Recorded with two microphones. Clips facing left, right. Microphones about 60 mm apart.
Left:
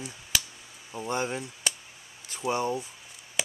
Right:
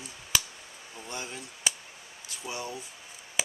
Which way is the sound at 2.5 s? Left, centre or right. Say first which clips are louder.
Left 10 dB; left.